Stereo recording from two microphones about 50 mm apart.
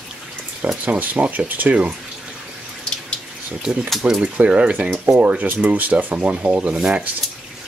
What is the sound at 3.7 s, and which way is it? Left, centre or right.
Speech, centre.